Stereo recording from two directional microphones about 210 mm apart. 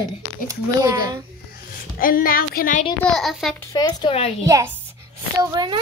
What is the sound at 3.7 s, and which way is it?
Speech, 20° left (ahead or behind).